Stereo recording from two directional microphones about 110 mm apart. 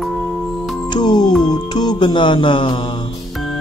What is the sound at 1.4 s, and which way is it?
Speech, 40° left (ahead or behind).